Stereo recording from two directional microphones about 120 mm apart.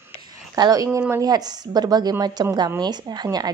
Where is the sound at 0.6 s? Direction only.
35° right (ahead or behind).